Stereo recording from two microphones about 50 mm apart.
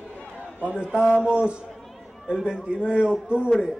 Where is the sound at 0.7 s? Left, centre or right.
Centre.